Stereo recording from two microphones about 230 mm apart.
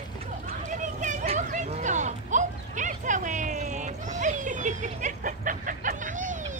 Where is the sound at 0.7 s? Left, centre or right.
Right.